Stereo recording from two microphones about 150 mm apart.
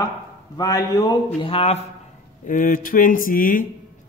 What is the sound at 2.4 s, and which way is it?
Speech, 65° left (ahead or behind).